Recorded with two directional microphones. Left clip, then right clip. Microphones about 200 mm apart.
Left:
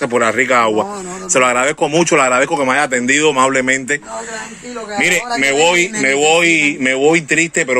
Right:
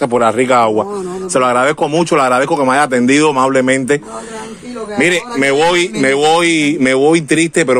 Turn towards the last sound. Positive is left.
turn(degrees=-30)  # may be behind; listen again after turning